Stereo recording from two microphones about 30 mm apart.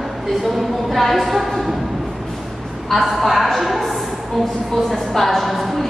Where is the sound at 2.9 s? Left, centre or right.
Centre.